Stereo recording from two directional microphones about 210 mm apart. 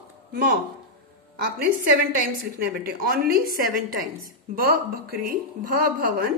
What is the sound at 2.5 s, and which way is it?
A woman's voice, 45° right (ahead or behind).